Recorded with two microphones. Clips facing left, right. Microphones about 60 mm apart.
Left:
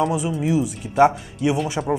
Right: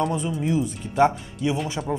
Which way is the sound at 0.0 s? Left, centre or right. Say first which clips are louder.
Left 3 dB; centre.